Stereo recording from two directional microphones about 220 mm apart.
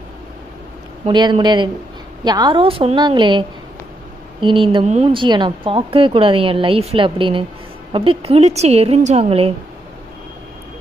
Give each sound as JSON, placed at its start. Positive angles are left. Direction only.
{"t": 1.0, "sound": "a woman's voice", "side_deg": -20}